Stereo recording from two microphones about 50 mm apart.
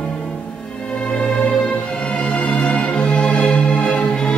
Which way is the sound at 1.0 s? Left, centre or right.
Centre.